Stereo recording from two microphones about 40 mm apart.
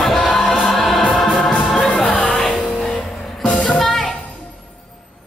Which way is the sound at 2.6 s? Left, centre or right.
Left.